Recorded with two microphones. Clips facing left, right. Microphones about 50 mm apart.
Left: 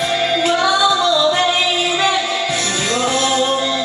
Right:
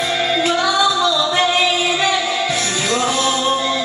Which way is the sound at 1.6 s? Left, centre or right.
Centre.